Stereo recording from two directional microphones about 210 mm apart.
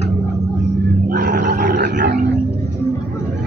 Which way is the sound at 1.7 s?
55° right (ahead or behind).